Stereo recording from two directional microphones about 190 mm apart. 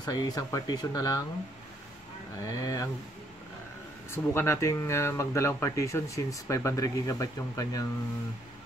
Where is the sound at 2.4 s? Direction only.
15° left (ahead or behind).